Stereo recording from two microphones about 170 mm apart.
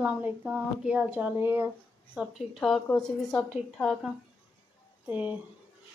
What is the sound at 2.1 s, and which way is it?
A woman's voice, centre (ahead or behind).